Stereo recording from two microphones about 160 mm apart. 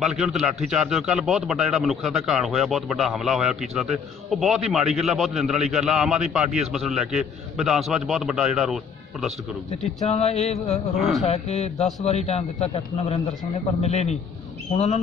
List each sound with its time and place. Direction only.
0.0 s a man's voice: 5° right (ahead or behind)
9.7 s a man's voice: 40° left (ahead or behind)